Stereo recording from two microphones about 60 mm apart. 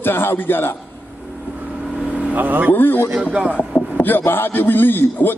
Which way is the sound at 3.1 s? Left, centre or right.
Centre.